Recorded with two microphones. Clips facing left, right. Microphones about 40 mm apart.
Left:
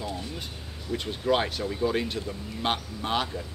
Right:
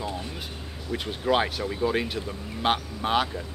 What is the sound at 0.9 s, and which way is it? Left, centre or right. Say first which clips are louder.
Speech: right 1 dB; centre.